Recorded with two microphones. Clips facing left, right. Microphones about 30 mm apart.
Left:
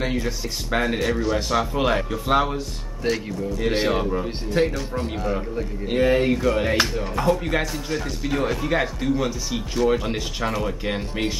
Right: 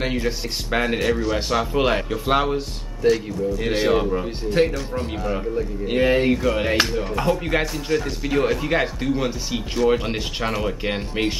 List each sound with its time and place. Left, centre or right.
0.0 s a man's voice: centre
1.7 s a man's voice: centre
3.7 s a man's voice: centre
7.9 s speech: centre
8.4 s a man's voice: centre